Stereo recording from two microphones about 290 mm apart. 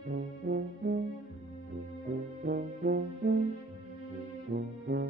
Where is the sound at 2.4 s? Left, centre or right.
Right.